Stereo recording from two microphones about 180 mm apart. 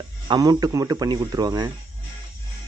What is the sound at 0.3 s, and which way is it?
Speech, 20° right (ahead or behind).